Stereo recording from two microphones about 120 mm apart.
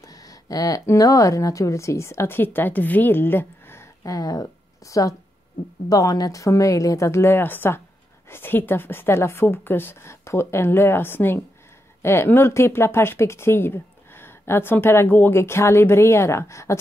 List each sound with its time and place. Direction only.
0.1 s speech: 30° left (ahead or behind)